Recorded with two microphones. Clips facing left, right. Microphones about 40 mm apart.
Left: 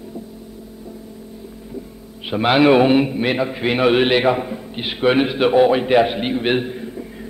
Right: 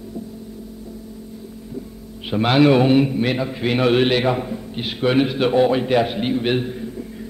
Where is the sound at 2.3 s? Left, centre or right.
Centre.